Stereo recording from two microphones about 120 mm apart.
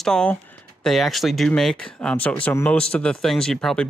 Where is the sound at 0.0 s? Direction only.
5° left (ahead or behind).